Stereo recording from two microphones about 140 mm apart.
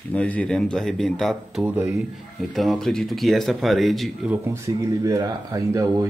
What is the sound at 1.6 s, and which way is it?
Speech, 15° right (ahead or behind).